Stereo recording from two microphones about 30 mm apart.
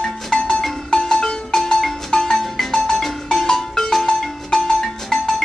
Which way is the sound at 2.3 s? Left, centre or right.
Centre.